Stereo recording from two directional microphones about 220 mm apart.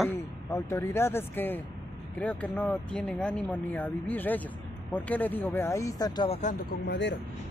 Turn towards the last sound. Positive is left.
turn(degrees=50)  # may be behind; listen again after turning